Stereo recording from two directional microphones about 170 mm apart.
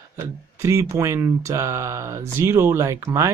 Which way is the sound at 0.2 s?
20° right (ahead or behind).